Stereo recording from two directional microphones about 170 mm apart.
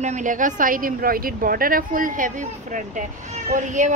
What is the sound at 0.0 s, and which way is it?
Speech, 45° right (ahead or behind).